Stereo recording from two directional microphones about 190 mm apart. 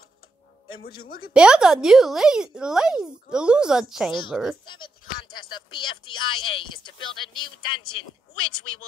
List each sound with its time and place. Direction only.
0.8 s a woman's voice: 50° left (ahead or behind)
1.3 s speech: 5° right (ahead or behind)
4.6 s speech: 25° left (ahead or behind)
6.1 s speech: 90° left
6.5 s speech: 25° left (ahead or behind)